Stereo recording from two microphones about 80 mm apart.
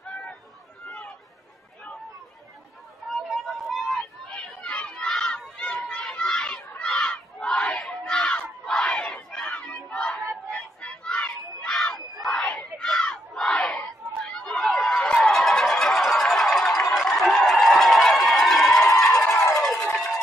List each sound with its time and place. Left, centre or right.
0.8 s chatter: centre
3.4 s a sound: centre
6.8 s crowd: centre
9.5 s battle cry: centre
9.8 s a sound: centre
11.7 s battle cry: centre
14.2 s chatter: centre
15.3 s music: centre
19.2 s music: left
19.5 s a sound: centre